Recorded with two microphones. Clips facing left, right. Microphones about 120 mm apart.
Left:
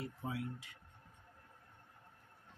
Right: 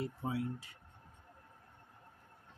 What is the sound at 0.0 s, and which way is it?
Speech, 30° right (ahead or behind).